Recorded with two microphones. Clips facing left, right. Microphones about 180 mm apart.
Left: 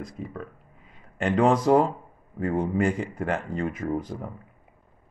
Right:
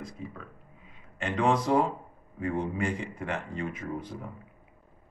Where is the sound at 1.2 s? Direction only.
45° left (ahead or behind).